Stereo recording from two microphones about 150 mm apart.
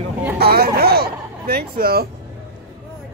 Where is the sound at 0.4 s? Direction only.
90° right.